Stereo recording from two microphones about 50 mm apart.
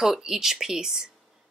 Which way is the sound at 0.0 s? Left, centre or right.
Centre.